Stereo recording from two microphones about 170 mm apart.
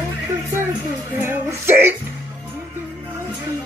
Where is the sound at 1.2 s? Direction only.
15° right (ahead or behind).